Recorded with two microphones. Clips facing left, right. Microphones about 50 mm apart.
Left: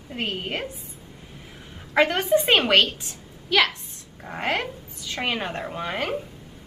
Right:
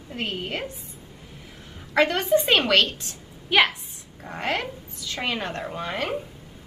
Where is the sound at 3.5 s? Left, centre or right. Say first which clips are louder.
Right 1 dB; centre.